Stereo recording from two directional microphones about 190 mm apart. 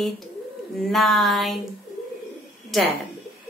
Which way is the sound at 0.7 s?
Centre (ahead or behind).